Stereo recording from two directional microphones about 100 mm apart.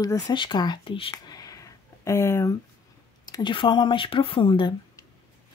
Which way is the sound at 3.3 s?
40° left (ahead or behind).